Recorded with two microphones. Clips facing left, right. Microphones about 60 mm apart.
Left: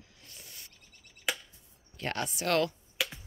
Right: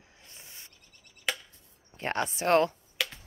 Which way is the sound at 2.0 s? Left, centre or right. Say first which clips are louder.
Right 4 dB; right.